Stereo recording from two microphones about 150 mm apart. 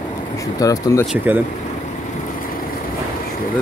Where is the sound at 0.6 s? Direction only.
20° left (ahead or behind).